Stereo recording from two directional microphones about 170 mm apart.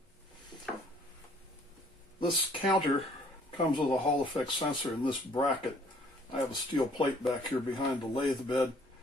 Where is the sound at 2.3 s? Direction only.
30° left (ahead or behind).